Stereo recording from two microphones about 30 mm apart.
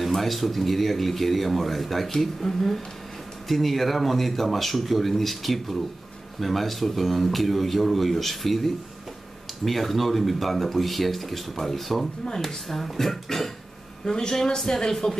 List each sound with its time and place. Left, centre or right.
0.0 s speech: centre
2.0 s speech: centre
14.0 s a woman's voice: left